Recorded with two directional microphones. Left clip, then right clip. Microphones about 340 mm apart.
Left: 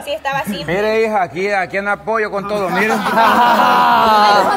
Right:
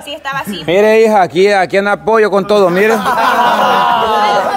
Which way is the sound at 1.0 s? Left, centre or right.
Centre.